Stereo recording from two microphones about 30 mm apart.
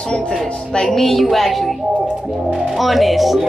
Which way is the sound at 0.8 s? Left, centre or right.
Centre.